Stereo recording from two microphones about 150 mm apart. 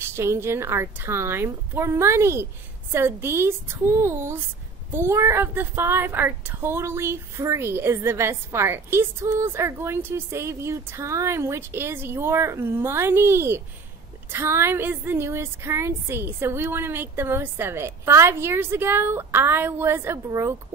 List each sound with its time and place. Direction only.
0.0 s a child's voice: 15° right (ahead or behind)